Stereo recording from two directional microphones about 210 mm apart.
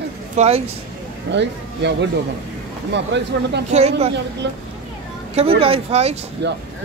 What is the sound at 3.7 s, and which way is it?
Speech, 30° right (ahead or behind).